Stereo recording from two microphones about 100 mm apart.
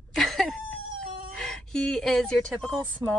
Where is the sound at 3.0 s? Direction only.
20° right (ahead or behind).